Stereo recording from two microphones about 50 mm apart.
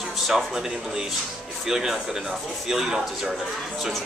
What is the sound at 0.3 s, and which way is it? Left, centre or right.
Speech, centre.